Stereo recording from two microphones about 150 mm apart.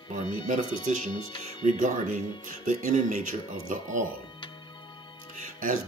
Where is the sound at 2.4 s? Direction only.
60° right (ahead or behind).